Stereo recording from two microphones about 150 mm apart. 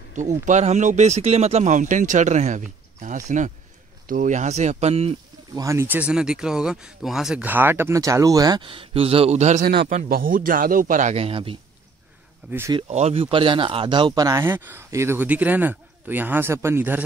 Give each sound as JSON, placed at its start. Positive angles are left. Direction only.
{"t": 0.1, "sound": "speech", "side_deg": -55}
{"t": 5.5, "sound": "speech", "side_deg": -20}
{"t": 10.1, "sound": "a man's voice", "side_deg": -70}
{"t": 12.4, "sound": "speech", "side_deg": -15}
{"t": 12.9, "sound": "speech", "side_deg": -45}